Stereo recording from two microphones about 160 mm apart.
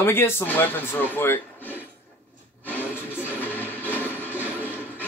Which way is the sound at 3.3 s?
10° left (ahead or behind).